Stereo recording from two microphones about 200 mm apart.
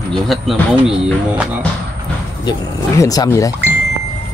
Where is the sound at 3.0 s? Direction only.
15° left (ahead or behind).